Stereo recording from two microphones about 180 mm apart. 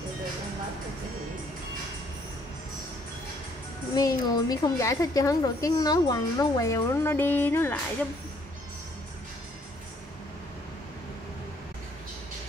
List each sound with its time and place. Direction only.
3.9 s a woman's voice: 20° left (ahead or behind)